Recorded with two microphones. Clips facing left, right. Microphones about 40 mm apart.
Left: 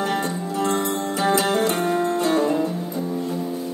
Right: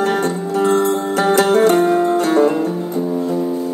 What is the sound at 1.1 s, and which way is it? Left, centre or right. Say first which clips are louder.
Music: right 6 dB; right.